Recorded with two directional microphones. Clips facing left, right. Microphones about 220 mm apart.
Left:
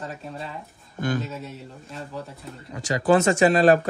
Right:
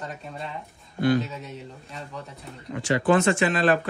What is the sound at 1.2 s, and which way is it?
Speech, centre (ahead or behind).